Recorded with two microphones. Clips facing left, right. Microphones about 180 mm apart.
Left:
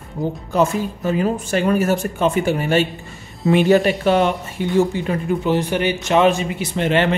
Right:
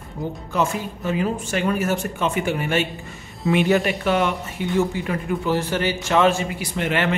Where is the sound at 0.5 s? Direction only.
40° left (ahead or behind).